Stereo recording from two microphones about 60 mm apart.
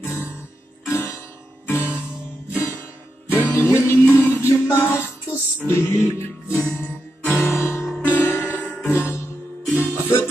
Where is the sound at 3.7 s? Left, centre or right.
Left.